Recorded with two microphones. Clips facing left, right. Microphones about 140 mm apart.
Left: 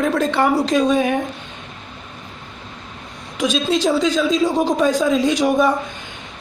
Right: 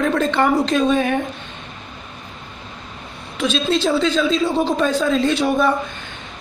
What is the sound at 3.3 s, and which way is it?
A man's voice, 10° left (ahead or behind).